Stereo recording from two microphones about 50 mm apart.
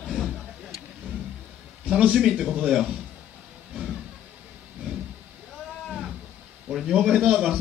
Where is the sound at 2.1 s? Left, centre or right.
Centre.